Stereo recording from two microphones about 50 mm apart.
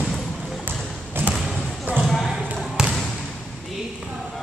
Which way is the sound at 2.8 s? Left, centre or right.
Centre.